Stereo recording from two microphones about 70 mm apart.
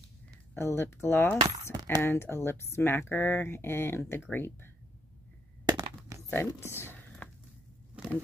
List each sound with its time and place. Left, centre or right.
0.6 s speech: left
1.4 s speech: right
2.0 s speech: left
5.7 s a sound: right
6.3 s speech: left
8.0 s vehicle: centre